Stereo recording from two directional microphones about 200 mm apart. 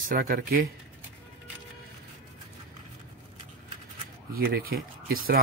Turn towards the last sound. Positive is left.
turn(degrees=-45)  # may be behind; listen again after turning